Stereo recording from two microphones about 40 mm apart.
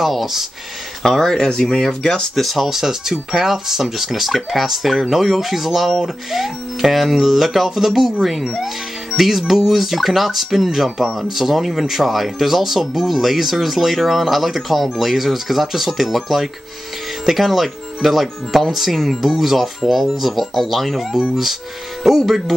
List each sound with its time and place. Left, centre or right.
0.0 s speech: centre
1.0 s speech: centre
2.3 s speech: centre